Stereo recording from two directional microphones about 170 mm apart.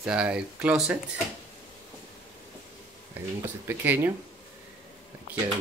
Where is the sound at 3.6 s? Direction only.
10° right (ahead or behind).